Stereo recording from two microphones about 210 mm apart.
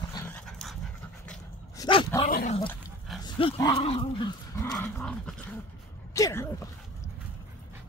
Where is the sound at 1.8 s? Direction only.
25° left (ahead or behind).